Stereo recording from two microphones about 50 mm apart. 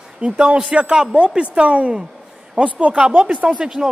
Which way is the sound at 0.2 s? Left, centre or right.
Right.